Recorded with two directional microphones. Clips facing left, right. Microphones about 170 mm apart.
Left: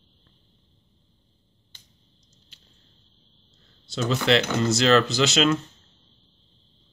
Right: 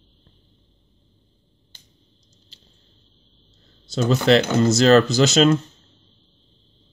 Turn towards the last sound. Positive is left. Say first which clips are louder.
# right 5 dB
turn(degrees=-45)  # may be behind; listen again after turning